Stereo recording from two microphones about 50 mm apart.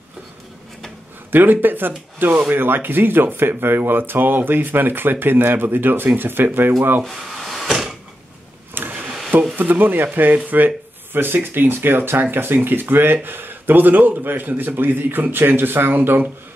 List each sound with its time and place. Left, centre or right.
1.3 s speech: right
7.3 s cupboard open or close: centre
8.7 s a sound: right
9.6 s speech: right